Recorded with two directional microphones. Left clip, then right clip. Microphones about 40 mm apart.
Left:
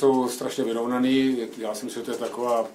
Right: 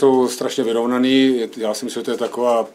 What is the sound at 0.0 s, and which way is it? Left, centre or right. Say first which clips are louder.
Speech: right 7 dB; right.